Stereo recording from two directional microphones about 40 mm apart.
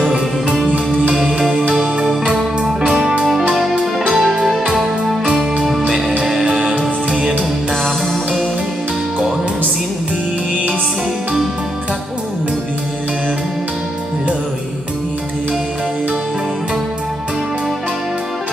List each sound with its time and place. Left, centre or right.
1.5 s music: right
2.9 s music: centre